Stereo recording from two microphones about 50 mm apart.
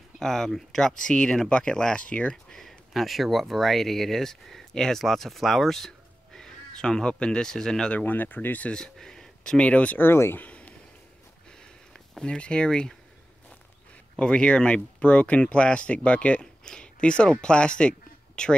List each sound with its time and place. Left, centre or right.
0.2 s speech: centre
2.0 s speech: left
2.9 s speech: centre
7.9 s speech: left
8.6 s speech: centre
8.9 s a sound: centre
9.6 s speech: left
9.9 s speech: left
11.6 s a sound: centre
14.1 s speech: centre